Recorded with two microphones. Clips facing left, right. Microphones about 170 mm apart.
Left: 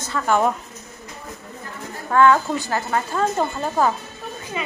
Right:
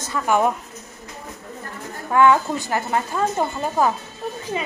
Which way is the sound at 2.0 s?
15° right (ahead or behind).